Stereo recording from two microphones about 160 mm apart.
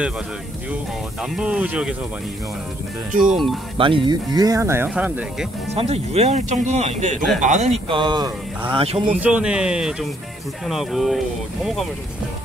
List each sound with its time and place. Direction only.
1.3 s speech: 5° right (ahead or behind)
3.3 s speech: centre (ahead or behind)
3.7 s speech: 35° right (ahead or behind); by 5.5 s 10° right (ahead or behind)
5.8 s speech: 40° right (ahead or behind)
7.9 s speech: 30° right (ahead or behind)
9.2 s speech: 5° right (ahead or behind)